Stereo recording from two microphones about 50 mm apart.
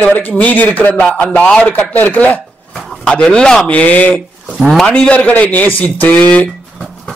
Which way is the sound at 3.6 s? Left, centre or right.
Left.